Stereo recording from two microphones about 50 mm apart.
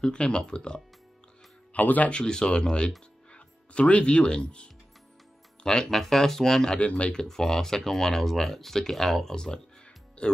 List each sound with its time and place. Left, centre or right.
0.0 s speech: centre
1.7 s speech: left
2.1 s speech: centre
6.8 s speech: left
7.2 s speech: centre